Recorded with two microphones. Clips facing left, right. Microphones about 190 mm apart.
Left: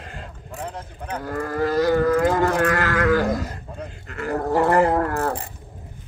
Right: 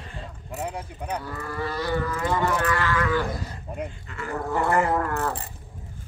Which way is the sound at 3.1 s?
45° left (ahead or behind).